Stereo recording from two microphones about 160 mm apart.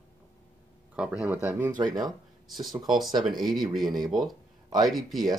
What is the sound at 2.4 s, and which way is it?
Speech, centre (ahead or behind).